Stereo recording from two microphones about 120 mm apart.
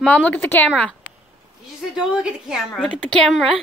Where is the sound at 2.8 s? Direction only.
10° left (ahead or behind).